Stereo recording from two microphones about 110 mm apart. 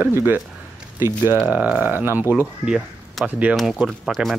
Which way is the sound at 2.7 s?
Centre (ahead or behind).